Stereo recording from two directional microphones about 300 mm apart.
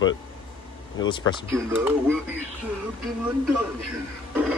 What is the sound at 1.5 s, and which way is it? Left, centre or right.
Speech, centre.